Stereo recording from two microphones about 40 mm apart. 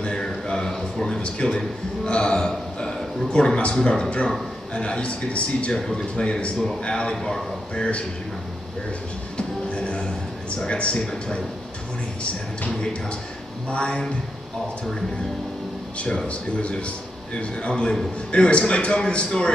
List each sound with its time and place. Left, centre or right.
0.0 s a sound: left
1.4 s a man's voice: left
4.7 s a man's voice: left
9.4 s music: left
10.6 s a man's voice: left
13.7 s a man's voice: left
16.3 s a man's voice: left